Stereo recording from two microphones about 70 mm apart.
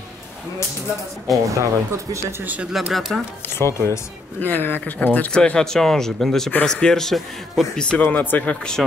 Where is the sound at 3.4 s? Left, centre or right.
Left.